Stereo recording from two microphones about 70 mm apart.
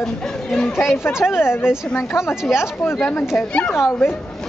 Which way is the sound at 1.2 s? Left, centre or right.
Left.